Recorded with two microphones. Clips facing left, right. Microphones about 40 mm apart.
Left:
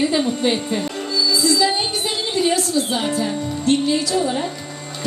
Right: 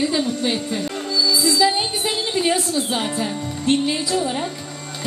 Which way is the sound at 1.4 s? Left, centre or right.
Centre.